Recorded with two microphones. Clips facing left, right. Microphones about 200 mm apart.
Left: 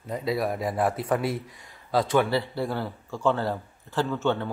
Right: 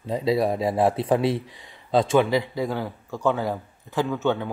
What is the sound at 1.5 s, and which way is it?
Speech, centre (ahead or behind).